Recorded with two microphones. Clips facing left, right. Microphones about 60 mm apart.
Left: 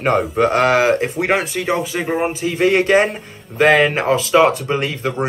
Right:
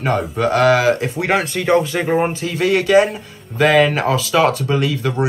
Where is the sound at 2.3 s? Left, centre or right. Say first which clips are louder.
Left 1 dB; centre.